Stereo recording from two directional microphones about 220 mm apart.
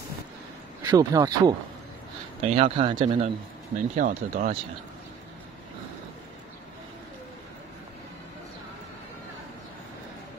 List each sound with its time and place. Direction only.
0.8 s speech: 15° right (ahead or behind)
2.4 s speech: 30° right (ahead or behind)
3.9 s speech: 40° right (ahead or behind)